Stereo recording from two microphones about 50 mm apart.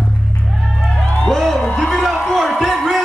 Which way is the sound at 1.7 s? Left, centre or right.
Centre.